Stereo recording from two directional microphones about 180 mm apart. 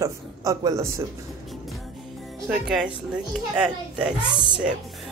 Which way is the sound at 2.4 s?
5° right (ahead or behind).